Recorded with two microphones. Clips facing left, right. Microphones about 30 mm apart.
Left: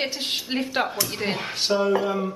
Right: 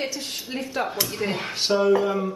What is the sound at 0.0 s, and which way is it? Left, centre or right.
Speech, left.